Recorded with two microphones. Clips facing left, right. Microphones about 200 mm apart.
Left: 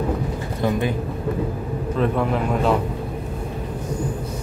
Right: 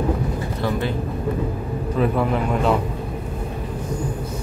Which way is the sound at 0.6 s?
15° left (ahead or behind).